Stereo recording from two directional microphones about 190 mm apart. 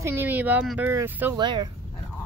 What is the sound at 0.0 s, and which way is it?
Speech, 10° right (ahead or behind).